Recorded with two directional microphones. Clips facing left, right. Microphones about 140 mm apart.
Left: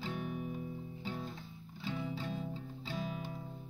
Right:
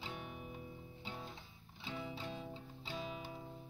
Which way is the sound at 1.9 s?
Centre (ahead or behind).